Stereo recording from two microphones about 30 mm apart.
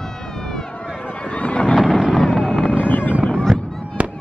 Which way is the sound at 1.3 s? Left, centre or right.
Left.